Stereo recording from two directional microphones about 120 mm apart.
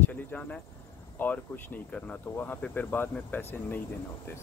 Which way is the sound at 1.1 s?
15° left (ahead or behind).